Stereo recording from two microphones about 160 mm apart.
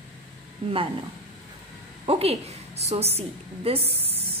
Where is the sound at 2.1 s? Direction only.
40° right (ahead or behind).